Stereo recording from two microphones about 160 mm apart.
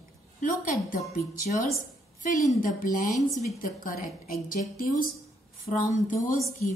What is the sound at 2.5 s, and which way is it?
A woman's voice, 60° left (ahead or behind).